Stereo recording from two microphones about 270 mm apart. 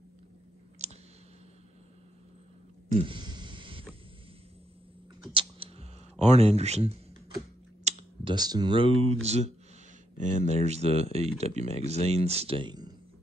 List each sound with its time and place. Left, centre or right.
3.0 s a sound: centre
5.3 s computer keyboard: right
7.8 s speech: centre
10.1 s speech: left
10.6 s speech: right